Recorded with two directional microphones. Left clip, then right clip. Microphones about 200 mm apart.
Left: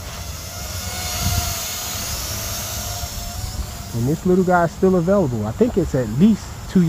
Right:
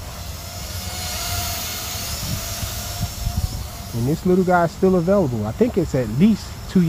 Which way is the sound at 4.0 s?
5° right (ahead or behind).